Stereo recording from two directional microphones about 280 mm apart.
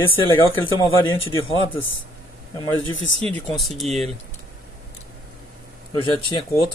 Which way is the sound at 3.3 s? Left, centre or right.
Centre.